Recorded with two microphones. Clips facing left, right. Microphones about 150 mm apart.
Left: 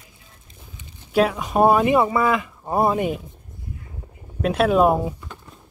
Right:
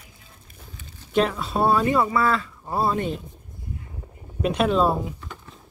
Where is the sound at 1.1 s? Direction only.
10° left (ahead or behind).